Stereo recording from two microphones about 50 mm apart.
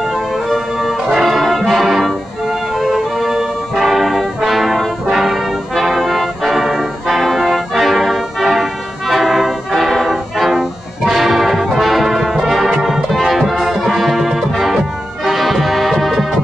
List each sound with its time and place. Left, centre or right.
0.5 s brass instrument: centre